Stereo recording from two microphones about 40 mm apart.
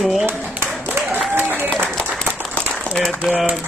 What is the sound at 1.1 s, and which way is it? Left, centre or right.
Applause, right.